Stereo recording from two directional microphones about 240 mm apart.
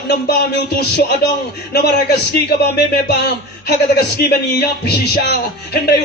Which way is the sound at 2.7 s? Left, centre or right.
Left.